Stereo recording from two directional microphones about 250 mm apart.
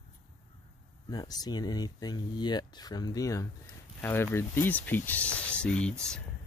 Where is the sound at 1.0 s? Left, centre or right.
Centre.